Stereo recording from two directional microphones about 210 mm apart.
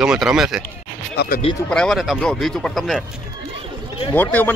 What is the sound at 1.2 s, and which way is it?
Speech, 50° left (ahead or behind).